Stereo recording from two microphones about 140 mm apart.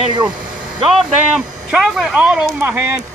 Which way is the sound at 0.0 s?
35° right (ahead or behind).